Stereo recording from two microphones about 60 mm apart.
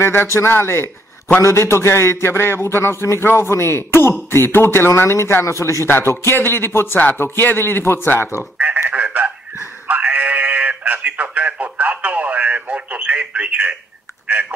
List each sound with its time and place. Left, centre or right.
0.0 s a man's voice: left
5.9 s speech: left
8.9 s a sound: right
9.8 s speech: right